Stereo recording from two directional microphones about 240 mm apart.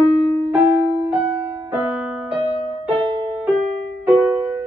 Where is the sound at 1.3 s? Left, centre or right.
Centre.